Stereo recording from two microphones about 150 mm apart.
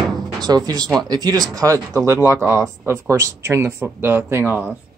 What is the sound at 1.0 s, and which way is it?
Speech, 25° right (ahead or behind).